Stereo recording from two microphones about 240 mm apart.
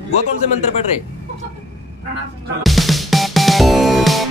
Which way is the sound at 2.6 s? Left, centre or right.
Centre.